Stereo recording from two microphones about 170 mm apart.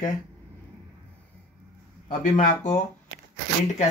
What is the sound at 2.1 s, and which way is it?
Speech, 45° left (ahead or behind).